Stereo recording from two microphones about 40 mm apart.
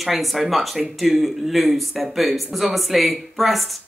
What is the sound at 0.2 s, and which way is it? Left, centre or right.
Speech, centre.